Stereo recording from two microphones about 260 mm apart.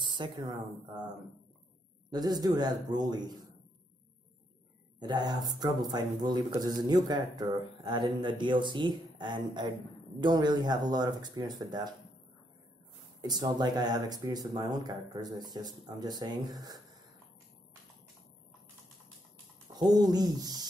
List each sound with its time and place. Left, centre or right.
0.0 s speech: centre
2.0 s speech: centre
5.0 s speech: centre
13.2 s speech: centre
19.8 s speech: centre